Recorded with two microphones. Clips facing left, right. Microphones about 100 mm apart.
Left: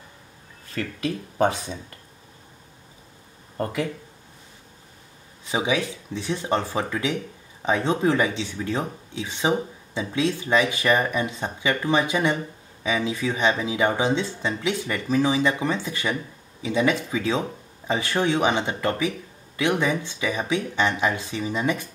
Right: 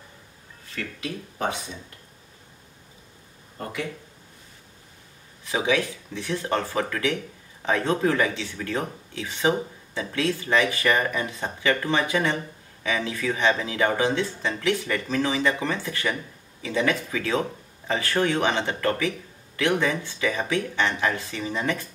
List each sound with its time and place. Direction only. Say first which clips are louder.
5.4 s speech: even; 20° left (ahead or behind)